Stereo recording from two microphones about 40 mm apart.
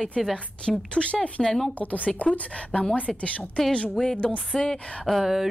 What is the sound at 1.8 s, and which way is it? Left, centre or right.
Speech, left.